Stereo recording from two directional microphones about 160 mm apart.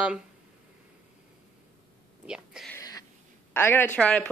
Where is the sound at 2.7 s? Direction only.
20° left (ahead or behind).